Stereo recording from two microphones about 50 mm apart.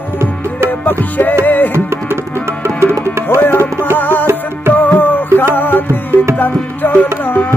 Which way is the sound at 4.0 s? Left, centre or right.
Left.